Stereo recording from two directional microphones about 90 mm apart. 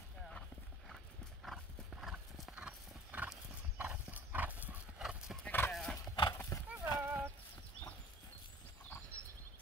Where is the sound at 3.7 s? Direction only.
20° right (ahead or behind).